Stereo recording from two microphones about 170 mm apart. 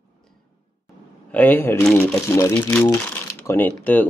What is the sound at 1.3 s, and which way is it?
Speech, 10° left (ahead or behind).